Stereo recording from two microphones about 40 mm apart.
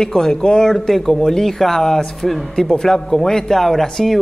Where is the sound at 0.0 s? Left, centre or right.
Centre.